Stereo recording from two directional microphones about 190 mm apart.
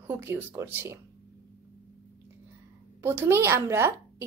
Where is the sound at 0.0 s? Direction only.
10° right (ahead or behind).